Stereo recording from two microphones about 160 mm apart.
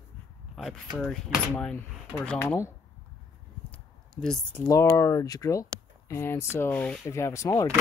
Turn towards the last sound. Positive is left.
turn(degrees=20)  # may be behind; listen again after turning